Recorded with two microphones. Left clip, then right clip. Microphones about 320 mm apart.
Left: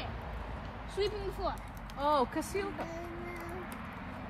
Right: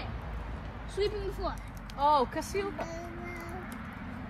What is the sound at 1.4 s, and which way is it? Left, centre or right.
Speech, centre.